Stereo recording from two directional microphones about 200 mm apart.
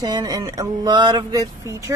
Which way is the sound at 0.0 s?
20° right (ahead or behind).